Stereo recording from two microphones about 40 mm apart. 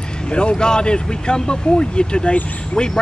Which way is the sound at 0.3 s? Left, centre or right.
Left.